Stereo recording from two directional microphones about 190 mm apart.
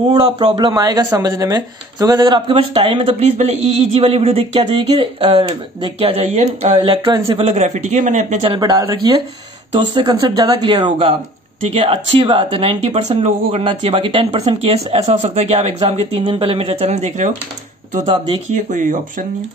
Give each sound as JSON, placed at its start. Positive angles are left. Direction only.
{"t": 0.1, "sound": "speech", "side_deg": -20}
{"t": 8.5, "sound": "speech", "side_deg": -20}
{"t": 18.5, "sound": "speech", "side_deg": -40}